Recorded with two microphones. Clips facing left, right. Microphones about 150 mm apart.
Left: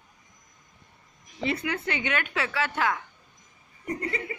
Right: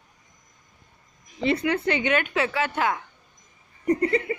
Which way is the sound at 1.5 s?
30° right (ahead or behind).